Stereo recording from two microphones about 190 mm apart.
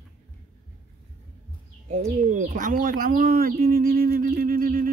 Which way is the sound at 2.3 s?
40° right (ahead or behind).